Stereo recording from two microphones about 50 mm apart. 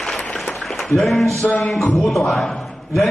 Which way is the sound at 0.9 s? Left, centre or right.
Centre.